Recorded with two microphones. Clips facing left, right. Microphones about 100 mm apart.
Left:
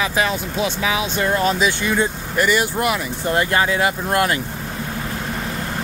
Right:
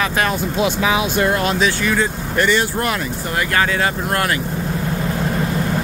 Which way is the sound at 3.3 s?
20° left (ahead or behind).